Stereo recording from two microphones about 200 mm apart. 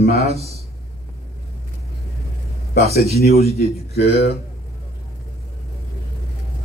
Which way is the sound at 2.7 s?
50° left (ahead or behind).